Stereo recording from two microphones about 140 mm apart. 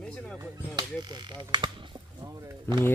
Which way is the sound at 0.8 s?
30° right (ahead or behind).